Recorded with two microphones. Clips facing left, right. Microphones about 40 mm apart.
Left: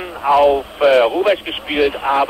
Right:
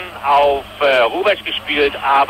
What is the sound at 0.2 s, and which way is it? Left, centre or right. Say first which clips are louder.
Speech: even; centre.